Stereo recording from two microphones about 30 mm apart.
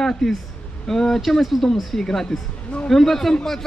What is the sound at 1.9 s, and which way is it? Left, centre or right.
A man's voice, centre.